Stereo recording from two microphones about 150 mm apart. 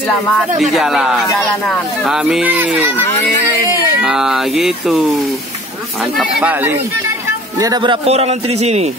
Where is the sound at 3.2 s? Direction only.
25° left (ahead or behind).